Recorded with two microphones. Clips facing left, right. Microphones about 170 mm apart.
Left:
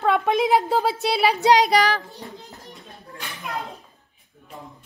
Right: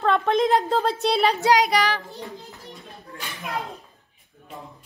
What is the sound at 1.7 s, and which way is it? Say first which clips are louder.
Child singing: left 3 dB; 40° left (ahead or behind).